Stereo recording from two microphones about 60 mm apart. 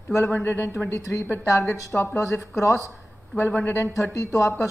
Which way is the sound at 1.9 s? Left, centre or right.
Left.